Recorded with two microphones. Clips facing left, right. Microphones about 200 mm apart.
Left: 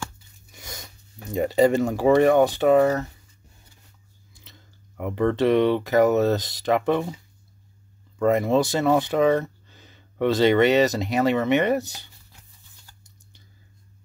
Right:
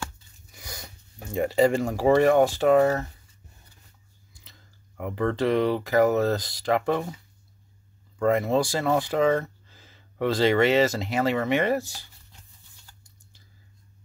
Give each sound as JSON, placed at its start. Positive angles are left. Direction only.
{"t": 0.6, "sound": "a sound", "side_deg": 25}
{"t": 1.3, "sound": "speech", "side_deg": 20}
{"t": 4.3, "sound": "speech", "side_deg": 20}
{"t": 8.2, "sound": "speech", "side_deg": 20}